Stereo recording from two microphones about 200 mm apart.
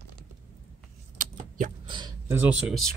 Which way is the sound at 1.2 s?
40° right (ahead or behind).